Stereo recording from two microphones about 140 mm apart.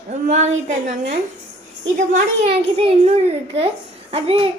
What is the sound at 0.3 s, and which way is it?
Speech, 55° right (ahead or behind).